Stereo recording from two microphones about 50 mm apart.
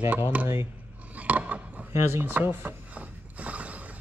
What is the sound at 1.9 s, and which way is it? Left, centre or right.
Speech, right.